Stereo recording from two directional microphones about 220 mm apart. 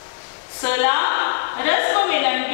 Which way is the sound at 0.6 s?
15° left (ahead or behind).